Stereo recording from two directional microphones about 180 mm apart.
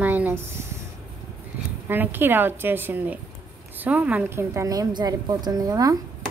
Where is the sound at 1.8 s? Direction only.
10° right (ahead or behind).